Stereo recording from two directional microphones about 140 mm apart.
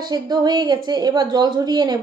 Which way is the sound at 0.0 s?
30° right (ahead or behind).